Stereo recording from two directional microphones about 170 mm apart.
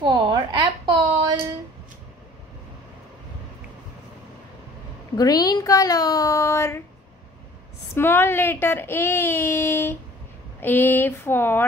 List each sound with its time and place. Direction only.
0.0 s a sound: 25° right (ahead or behind)
5.1 s speech: 25° left (ahead or behind)
7.9 s speech: 15° left (ahead or behind)